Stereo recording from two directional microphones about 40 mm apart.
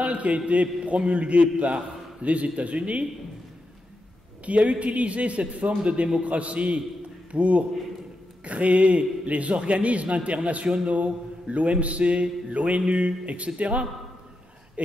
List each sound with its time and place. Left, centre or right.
0.0 s a sound: right
0.5 s a man's voice: right
4.5 s a man's voice: right
10.9 s mantra: right
11.5 s a man's voice: right